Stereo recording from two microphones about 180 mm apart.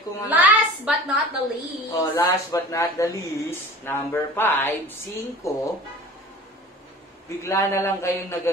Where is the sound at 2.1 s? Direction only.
20° left (ahead or behind).